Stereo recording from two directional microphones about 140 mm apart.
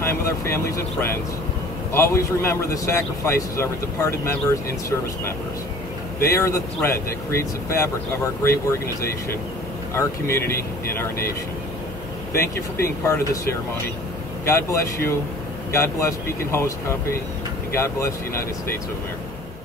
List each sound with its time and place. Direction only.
0.0 s a man's voice: 20° left (ahead or behind)
6.2 s a man's voice: 20° left (ahead or behind)
12.4 s a man's voice: 20° left (ahead or behind)
17.7 s a man's voice: 20° left (ahead or behind)